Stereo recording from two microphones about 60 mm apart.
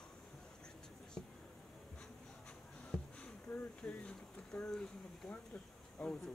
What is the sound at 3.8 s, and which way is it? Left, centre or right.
Speech, left.